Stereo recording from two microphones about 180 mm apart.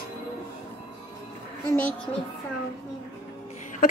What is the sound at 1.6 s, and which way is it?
Speech, 10° left (ahead or behind).